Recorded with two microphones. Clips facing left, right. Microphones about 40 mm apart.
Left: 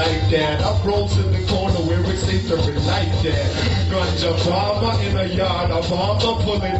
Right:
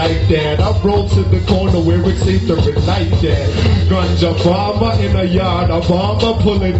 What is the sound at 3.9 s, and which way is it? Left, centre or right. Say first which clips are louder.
Music: right 4 dB; right.